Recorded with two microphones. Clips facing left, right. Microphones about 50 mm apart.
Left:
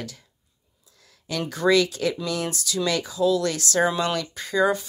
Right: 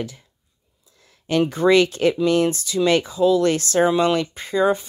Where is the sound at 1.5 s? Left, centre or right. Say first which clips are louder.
Right 2 dB; right.